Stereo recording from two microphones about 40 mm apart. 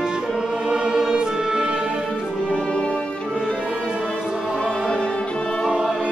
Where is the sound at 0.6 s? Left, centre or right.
Right.